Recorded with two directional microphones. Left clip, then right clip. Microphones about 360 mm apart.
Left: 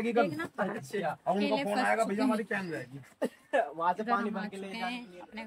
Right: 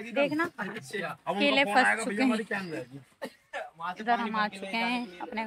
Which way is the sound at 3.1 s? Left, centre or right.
Left.